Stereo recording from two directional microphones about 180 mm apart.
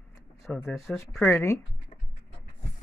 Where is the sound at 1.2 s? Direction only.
15° left (ahead or behind).